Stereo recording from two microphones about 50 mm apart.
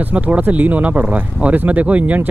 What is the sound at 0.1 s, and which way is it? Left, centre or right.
Speech, right.